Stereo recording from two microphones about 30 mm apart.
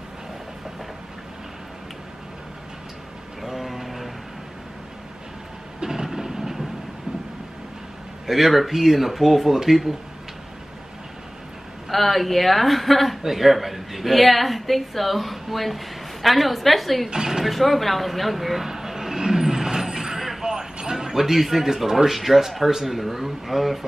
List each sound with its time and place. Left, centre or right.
3.4 s a sound: centre
5.8 s train: centre
8.3 s speech: centre
11.9 s a woman's voice: centre
17.1 s speech: centre
17.5 s a woman's voice: centre
18.7 s a sound: centre
20.2 s vehicle: centre
20.4 s a woman's voice: right; by 23.9 s centre